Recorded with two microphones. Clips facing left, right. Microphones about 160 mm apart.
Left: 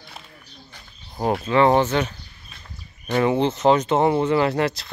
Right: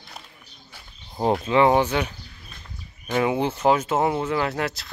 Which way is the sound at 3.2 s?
10° right (ahead or behind).